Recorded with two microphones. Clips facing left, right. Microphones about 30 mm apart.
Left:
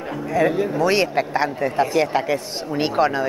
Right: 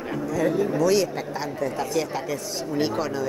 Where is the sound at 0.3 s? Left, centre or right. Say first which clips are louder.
Left 4 dB; left.